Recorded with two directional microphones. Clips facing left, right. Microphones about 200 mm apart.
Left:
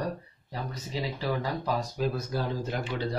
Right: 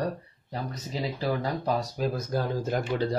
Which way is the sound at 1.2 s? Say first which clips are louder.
Right 3 dB; 40° right (ahead or behind).